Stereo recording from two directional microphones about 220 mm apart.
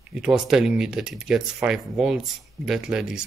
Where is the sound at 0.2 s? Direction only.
Centre (ahead or behind).